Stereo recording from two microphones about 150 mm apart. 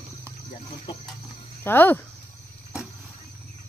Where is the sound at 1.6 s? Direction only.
15° left (ahead or behind).